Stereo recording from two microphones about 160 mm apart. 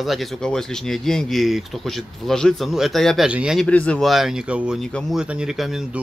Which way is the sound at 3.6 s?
10° left (ahead or behind).